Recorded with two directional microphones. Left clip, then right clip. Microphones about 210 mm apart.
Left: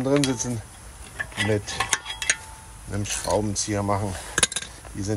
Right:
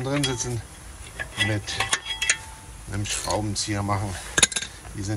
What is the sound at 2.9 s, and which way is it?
Speech, 20° left (ahead or behind).